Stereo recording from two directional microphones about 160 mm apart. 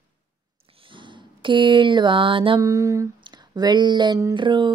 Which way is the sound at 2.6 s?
20° right (ahead or behind).